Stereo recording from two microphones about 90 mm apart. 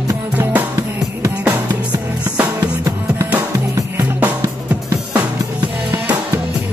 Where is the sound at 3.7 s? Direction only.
25° right (ahead or behind).